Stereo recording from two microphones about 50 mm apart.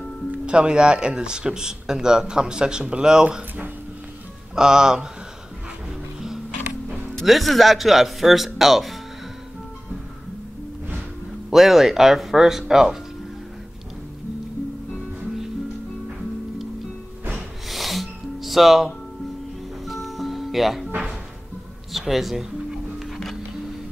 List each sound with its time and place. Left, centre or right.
0.3 s speech: right
4.6 s speech: centre
7.2 s speech: centre
11.5 s speech: centre
17.6 s music: centre
21.9 s music: centre